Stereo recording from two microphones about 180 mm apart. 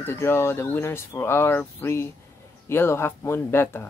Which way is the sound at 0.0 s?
15° left (ahead or behind).